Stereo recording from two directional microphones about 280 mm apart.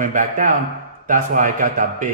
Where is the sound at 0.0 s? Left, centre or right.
Right.